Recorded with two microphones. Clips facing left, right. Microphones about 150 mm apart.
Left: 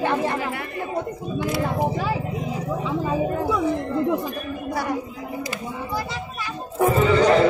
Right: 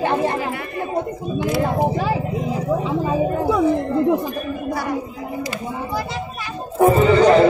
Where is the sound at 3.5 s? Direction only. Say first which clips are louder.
Right 5 dB; 35° right (ahead or behind).